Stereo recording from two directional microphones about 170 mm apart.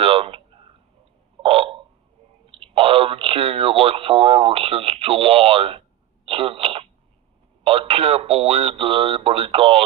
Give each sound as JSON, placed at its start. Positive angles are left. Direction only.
{"t": 0.0, "sound": "a sound", "side_deg": -35}
{"t": 1.4, "sound": "burping", "side_deg": -35}
{"t": 2.6, "sound": "radio", "side_deg": -35}
{"t": 7.6, "sound": "speech", "side_deg": -35}